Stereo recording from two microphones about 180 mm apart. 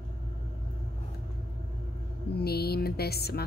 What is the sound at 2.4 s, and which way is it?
A woman's voice, 60° left (ahead or behind).